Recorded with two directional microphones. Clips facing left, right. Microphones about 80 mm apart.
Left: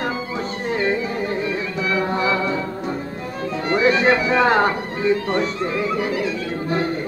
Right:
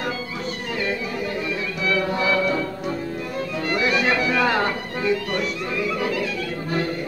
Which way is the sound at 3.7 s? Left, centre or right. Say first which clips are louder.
Left 5 dB; left.